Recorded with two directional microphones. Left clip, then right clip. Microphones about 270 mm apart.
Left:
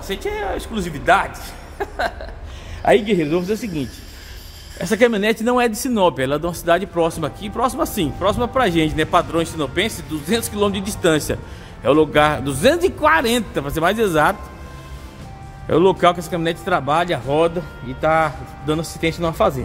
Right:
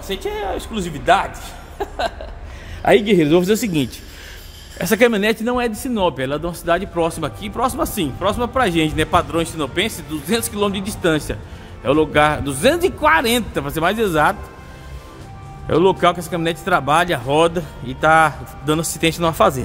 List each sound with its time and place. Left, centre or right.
0.0 s a man's voice: centre
2.8 s speech: right
4.7 s a man's voice: centre
15.6 s a man's voice: centre